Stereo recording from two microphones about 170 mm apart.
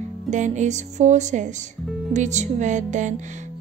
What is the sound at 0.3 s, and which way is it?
Speech, 45° right (ahead or behind).